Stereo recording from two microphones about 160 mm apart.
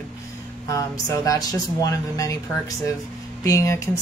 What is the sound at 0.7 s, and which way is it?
Speech, 20° left (ahead or behind).